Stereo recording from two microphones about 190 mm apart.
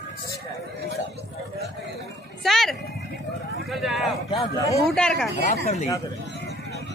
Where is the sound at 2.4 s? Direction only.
Centre (ahead or behind).